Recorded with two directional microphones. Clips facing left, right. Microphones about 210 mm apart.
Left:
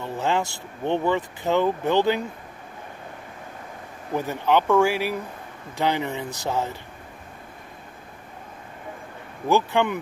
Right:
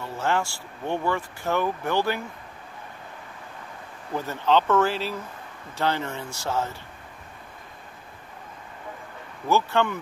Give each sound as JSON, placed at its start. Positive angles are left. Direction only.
{"t": 0.0, "sound": "speech", "side_deg": 15}
{"t": 4.1, "sound": "speech", "side_deg": 15}
{"t": 9.5, "sound": "speech", "side_deg": 15}